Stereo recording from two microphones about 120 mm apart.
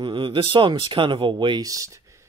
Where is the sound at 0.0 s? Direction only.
45° right (ahead or behind); by 2.0 s 30° right (ahead or behind).